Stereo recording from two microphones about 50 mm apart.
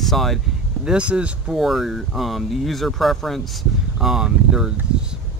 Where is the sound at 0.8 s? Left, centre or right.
Right.